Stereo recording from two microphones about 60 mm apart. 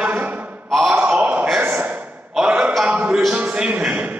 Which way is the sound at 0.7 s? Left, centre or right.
Centre.